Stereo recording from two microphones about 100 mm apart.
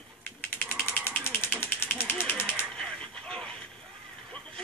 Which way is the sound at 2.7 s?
10° left (ahead or behind).